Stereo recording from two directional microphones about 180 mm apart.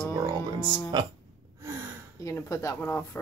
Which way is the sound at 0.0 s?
20° right (ahead or behind).